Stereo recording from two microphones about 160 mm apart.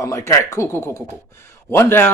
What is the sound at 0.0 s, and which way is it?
Speech, 20° left (ahead or behind).